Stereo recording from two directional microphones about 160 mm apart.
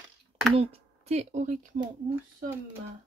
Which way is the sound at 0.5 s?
40° right (ahead or behind).